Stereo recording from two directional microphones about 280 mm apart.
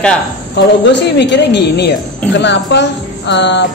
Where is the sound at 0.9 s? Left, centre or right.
Left.